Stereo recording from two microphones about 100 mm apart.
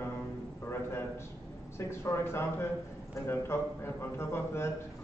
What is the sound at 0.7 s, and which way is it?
A man's voice, 25° left (ahead or behind).